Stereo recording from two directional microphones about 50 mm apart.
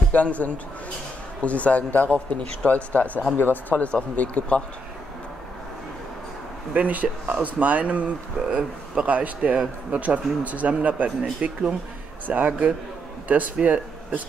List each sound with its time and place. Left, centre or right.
0.1 s speech: left
6.7 s speech: right
8.4 s speech: centre